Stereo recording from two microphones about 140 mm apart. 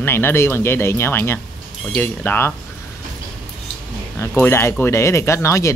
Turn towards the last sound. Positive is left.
turn(degrees=20)  # may be behind; listen again after turning